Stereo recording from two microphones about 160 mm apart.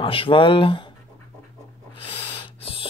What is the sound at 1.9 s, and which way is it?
Snort, 35° left (ahead or behind).